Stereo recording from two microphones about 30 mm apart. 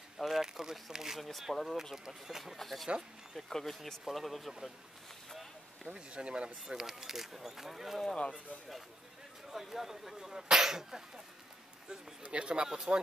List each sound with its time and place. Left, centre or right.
0.2 s speech: centre
1.5 s speech: centre
2.0 s speech: centre
2.5 s speech: centre
4.5 s speech: centre
5.9 s speech: right
6.8 s speech: centre
8.2 s speech: left
9.5 s speech: centre
12.2 s speech: right